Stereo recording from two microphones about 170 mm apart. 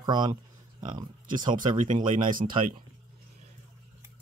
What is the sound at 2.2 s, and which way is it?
Speech, 55° right (ahead or behind).